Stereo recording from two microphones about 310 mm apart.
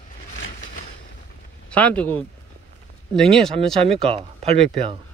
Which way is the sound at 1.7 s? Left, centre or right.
Centre.